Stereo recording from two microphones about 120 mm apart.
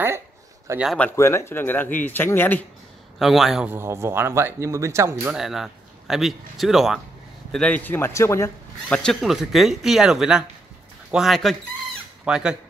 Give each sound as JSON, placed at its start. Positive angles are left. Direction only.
{"t": 0.7, "sound": "speech", "side_deg": -20}
{"t": 1.1, "sound": "a man's voice", "side_deg": 20}
{"t": 3.2, "sound": "speech", "side_deg": 0}
{"t": 3.6, "sound": "speech", "side_deg": -20}
{"t": 5.3, "sound": "speech", "side_deg": -5}
{"t": 7.5, "sound": "a man's voice", "side_deg": 10}
{"t": 8.8, "sound": "speech", "side_deg": 10}